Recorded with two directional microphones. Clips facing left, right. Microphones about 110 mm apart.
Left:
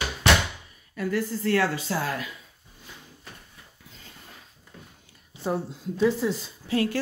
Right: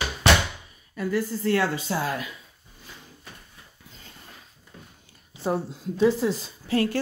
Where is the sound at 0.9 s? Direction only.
20° right (ahead or behind).